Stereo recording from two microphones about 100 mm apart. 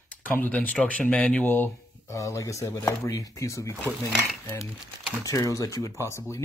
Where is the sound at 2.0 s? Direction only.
30° left (ahead or behind).